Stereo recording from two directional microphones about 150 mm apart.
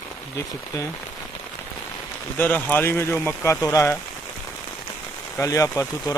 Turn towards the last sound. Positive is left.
turn(degrees=20)  # may be behind; listen again after turning